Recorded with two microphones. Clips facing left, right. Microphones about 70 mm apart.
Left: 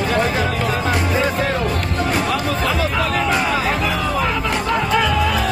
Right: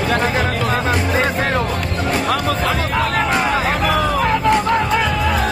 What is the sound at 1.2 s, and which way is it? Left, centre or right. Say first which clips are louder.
Speech: right 1 dB; right.